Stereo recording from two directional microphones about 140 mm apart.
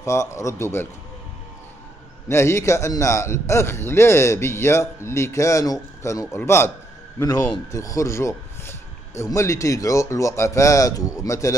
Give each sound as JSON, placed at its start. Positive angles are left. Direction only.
{"t": 0.0, "sound": "a man's voice", "side_deg": 20}
{"t": 2.2, "sound": "a man's voice", "side_deg": 20}